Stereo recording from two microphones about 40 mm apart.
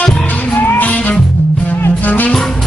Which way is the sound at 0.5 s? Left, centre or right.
Left.